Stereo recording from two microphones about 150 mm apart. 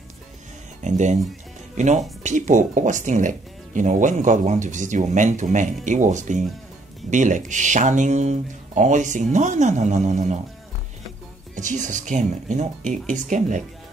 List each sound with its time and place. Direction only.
0.8 s speech: 55° right (ahead or behind)
11.5 s speech: 55° right (ahead or behind)